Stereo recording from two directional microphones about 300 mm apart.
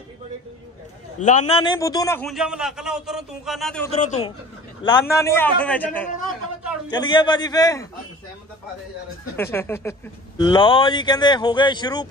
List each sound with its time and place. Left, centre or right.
1.2 s a man's voice: left
1.5 s a man's voice: centre
3.9 s speech: left
4.8 s speech: centre
9.4 s speech: centre